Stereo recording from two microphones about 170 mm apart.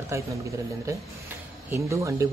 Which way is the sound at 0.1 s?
15° right (ahead or behind).